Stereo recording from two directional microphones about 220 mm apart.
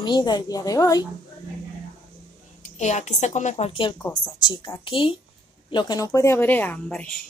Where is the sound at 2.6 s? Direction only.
30° left (ahead or behind).